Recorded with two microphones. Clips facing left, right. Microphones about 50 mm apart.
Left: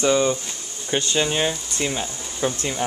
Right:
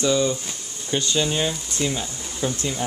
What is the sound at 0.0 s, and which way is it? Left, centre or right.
Speech, left.